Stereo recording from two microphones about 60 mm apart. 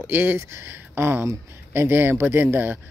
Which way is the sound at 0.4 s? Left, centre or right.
Right.